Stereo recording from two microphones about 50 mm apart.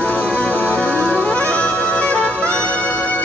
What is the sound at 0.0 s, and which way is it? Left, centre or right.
Music, left.